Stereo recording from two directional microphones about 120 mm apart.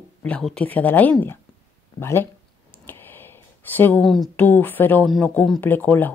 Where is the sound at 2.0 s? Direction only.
20° left (ahead or behind).